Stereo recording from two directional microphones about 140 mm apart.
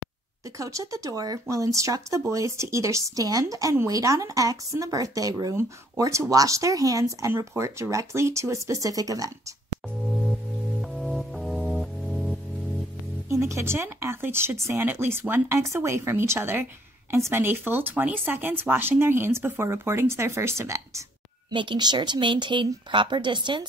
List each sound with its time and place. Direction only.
0.6 s speech: 20° right (ahead or behind)
10.8 s music: centre (ahead or behind)
13.3 s speech: 20° right (ahead or behind)
21.5 s speech: 35° right (ahead or behind)